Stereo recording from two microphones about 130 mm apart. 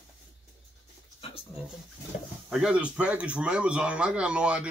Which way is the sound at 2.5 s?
5° right (ahead or behind).